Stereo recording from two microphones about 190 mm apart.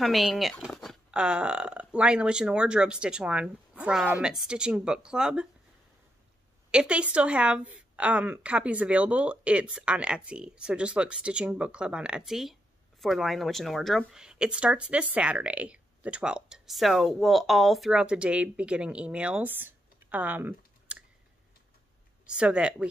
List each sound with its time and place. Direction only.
0.0 s speech: centre (ahead or behind)
6.7 s speech: 5° right (ahead or behind)
22.2 s speech: 5° right (ahead or behind)